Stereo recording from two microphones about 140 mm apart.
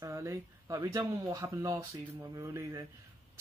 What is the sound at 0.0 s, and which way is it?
Speech, 20° right (ahead or behind).